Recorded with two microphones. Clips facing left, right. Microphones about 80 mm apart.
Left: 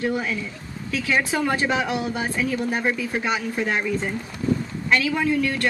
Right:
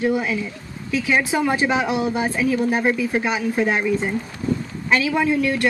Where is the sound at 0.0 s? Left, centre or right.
Centre.